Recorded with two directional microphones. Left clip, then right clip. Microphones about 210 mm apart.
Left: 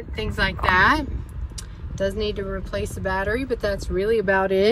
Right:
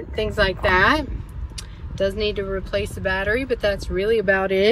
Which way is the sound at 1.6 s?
15° left (ahead or behind).